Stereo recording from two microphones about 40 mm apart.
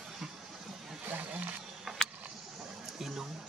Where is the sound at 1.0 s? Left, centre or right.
Right.